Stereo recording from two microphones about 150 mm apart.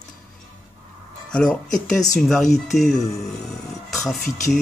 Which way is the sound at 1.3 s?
5° left (ahead or behind).